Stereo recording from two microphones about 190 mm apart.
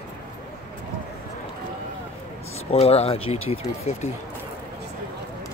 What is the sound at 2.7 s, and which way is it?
Speech, 30° left (ahead or behind).